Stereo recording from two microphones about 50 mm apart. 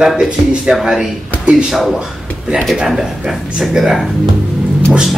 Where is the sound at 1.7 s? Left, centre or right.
Centre.